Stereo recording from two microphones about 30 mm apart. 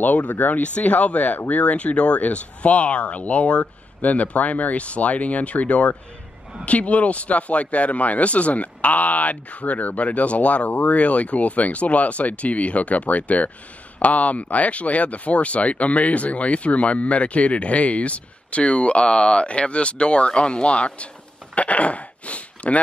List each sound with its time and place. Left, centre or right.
0.3 s speech: left
0.6 s speech: left
0.9 s speech: left
1.8 s speech: left
21.5 s speech: left